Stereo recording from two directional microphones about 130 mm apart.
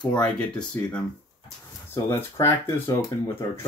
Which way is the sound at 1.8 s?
20° left (ahead or behind).